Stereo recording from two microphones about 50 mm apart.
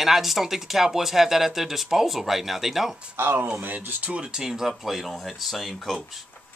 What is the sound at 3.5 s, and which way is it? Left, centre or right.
Speech, right.